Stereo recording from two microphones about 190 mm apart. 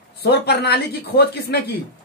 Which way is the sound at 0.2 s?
60° left (ahead or behind).